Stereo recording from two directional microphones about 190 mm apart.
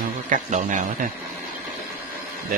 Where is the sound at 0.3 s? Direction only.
40° right (ahead or behind).